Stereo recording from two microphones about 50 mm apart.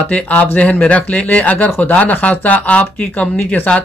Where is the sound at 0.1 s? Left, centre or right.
Left.